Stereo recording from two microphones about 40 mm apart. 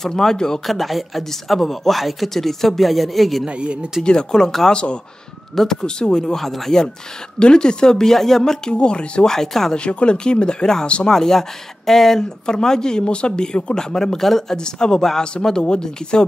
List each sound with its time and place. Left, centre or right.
0.0 s speech: centre
0.7 s speech: centre
3.4 s speech: right
4.0 s speech: left
7.3 s speech: left
8.7 s speech: left
9.3 s speech: centre
9.8 s speech: left; by 14.6 s centre
14.6 s speech: centre